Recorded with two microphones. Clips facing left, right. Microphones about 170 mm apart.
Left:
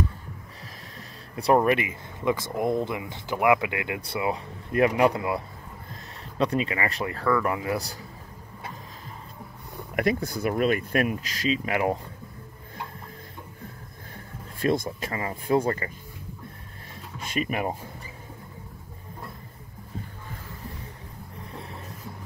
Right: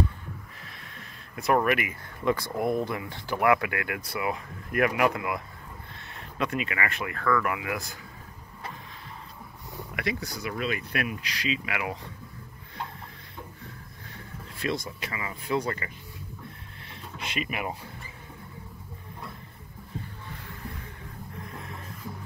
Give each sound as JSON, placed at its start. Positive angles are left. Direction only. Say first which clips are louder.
{"t": 0.9, "sound": "speech", "louder": "left 4 dB", "side_deg": 30}
{"t": 9.9, "sound": "speech", "louder": "left 8 dB", "side_deg": 50}
{"t": 14.1, "sound": "speech", "louder": "left 1 dB", "side_deg": 45}
{"t": 17.3, "sound": "speech", "louder": "left 5 dB", "side_deg": 40}
{"t": 21.5, "sound": "snort", "louder": "left 1 dB", "side_deg": 35}